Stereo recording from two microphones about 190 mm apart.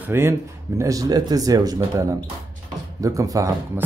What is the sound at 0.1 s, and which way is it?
Speech, 15° right (ahead or behind).